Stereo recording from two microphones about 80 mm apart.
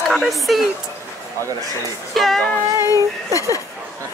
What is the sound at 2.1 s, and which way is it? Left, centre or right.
Speech, centre.